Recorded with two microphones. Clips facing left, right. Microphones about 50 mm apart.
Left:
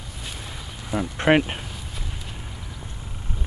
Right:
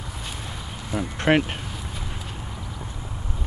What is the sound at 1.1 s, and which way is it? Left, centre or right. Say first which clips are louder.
Speech: left 1 dB; centre.